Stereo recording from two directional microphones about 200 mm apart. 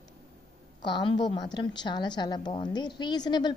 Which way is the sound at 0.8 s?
20° left (ahead or behind).